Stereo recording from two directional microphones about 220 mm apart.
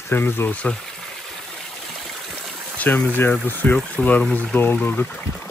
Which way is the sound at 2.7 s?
5° left (ahead or behind).